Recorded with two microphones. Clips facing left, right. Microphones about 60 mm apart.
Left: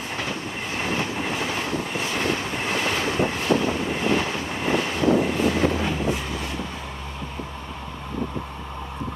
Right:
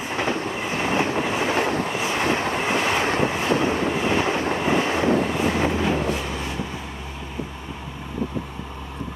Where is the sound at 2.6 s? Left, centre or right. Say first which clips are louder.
Right 1 dB; centre.